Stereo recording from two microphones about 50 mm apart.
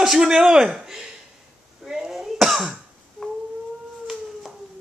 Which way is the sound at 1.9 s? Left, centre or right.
Centre.